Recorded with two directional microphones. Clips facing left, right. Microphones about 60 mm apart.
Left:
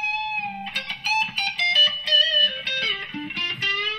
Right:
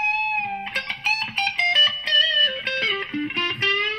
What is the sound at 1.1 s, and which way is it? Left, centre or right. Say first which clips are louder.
Music: left 1 dB; right.